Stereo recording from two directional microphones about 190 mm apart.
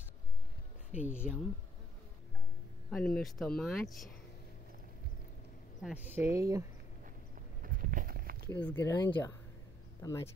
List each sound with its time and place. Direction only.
0.9 s speech: 5° right (ahead or behind)
2.9 s speech: 5° left (ahead or behind)
5.8 s speech: centre (ahead or behind)
6.1 s speech: 15° right (ahead or behind)
7.6 s a sound: 45° right (ahead or behind)
8.5 s speech: 10° left (ahead or behind)